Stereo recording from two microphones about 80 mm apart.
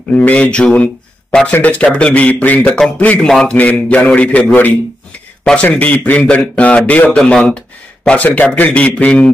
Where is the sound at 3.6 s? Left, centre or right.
Centre.